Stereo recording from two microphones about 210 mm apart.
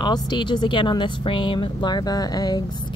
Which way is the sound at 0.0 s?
20° left (ahead or behind).